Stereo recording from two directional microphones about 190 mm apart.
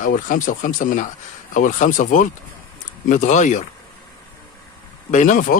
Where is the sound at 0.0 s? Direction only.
45° left (ahead or behind).